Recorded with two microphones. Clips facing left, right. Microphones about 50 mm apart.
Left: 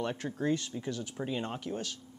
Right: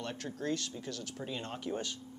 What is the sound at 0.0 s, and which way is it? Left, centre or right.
Speech, centre.